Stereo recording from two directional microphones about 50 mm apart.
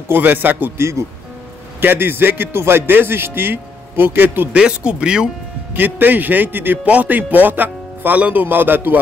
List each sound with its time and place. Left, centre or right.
0.1 s speech: right
0.7 s speech: right
1.8 s speech: right
4.5 s speech: right
5.8 s speech: right
6.8 s speech: right